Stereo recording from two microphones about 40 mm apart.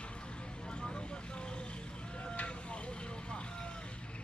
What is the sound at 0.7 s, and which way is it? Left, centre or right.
Vehicle, left.